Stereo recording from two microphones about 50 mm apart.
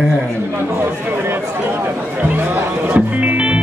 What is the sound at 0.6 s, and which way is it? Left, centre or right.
Speech, right.